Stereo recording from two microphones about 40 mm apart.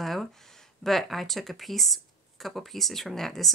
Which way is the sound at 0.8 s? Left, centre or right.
Centre.